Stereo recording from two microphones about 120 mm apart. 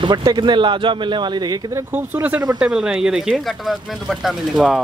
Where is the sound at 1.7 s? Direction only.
15° right (ahead or behind).